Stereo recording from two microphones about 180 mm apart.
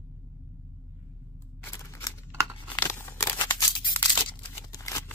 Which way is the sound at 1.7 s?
20° left (ahead or behind).